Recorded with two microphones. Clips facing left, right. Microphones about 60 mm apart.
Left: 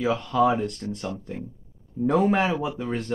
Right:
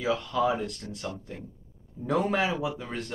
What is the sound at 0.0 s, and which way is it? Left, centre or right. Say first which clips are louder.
Speech: left 3 dB; left.